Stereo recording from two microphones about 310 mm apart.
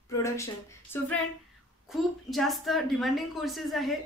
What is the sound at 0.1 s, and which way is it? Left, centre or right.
Speech, centre.